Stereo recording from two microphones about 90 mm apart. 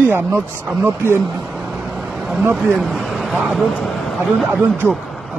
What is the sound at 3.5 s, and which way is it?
Speech, centre (ahead or behind).